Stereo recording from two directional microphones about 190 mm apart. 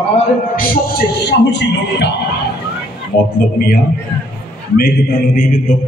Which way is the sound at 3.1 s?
50° left (ahead or behind).